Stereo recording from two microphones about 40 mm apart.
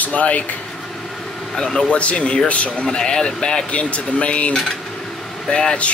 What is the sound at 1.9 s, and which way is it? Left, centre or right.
Speech, left.